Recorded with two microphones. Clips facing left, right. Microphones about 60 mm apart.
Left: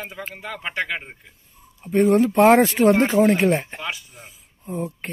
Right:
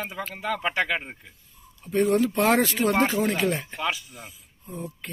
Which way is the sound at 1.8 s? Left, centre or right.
Left.